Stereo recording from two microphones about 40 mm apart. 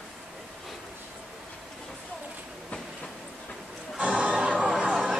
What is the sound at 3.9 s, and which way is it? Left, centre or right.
Music, right.